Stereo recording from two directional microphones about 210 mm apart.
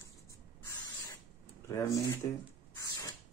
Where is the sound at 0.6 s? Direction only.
15° left (ahead or behind).